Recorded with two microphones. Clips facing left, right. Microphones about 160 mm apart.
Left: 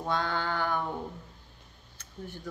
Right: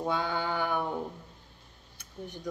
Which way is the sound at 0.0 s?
10° right (ahead or behind).